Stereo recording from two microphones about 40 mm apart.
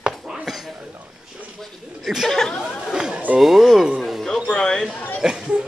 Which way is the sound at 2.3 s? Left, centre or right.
Centre.